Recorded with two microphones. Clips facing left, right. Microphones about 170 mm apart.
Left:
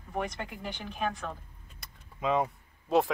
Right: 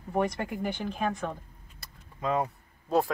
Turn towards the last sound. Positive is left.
turn(degrees=0)  # may be behind; listen again after turning